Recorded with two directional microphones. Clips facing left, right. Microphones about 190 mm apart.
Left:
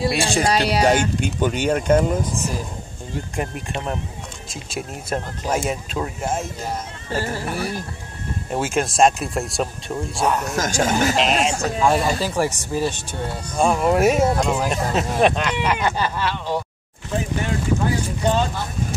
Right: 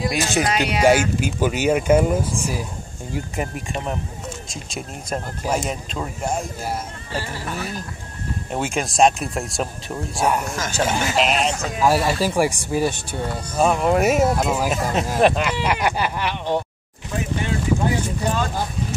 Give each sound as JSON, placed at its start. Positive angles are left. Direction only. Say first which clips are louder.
{"t": 0.0, "sound": "speech", "louder": "left 1 dB", "side_deg": 30}
{"t": 0.8, "sound": "speech", "louder": "right 2 dB", "side_deg": -5}
{"t": 5.4, "sound": "speech", "louder": "even", "side_deg": -10}
{"t": 5.7, "sound": "speech", "louder": "left 2 dB", "side_deg": 5}
{"t": 7.1, "sound": "speech", "louder": "left 5 dB", "side_deg": 45}
{"t": 8.5, "sound": "speech", "louder": "left 3 dB", "side_deg": 0}
{"t": 10.5, "sound": "speech", "louder": "left 2 dB", "side_deg": 45}
{"t": 11.8, "sound": "speech", "louder": "right 1 dB", "side_deg": -5}
{"t": 13.6, "sound": "speech", "louder": "even", "side_deg": 0}
{"t": 15.6, "sound": "speech", "louder": "left 1 dB", "side_deg": -15}